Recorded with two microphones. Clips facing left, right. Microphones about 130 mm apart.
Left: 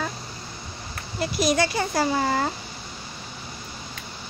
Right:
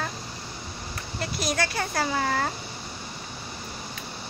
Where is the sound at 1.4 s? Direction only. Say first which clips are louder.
Left 6 dB; 15° left (ahead or behind).